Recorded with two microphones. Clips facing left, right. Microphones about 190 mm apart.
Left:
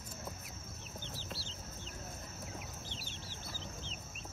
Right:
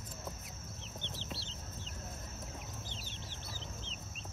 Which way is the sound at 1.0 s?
Centre (ahead or behind).